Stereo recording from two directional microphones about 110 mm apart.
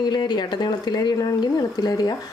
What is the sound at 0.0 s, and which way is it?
A woman's voice, 40° left (ahead or behind).